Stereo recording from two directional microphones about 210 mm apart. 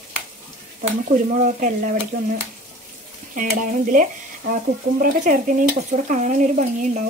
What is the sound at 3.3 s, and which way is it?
Speech, 40° right (ahead or behind).